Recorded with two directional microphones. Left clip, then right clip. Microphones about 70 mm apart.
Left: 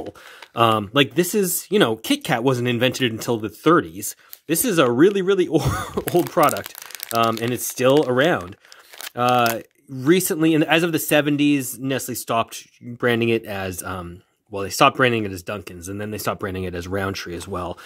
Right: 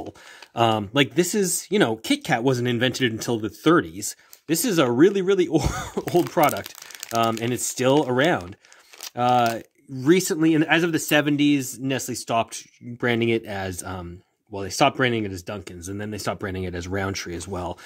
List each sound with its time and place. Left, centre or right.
0.6 s speech: left
9.1 s speech: left
14.5 s speech: left
15.8 s speech: left